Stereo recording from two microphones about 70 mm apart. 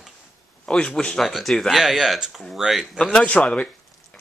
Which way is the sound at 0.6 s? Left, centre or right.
Centre.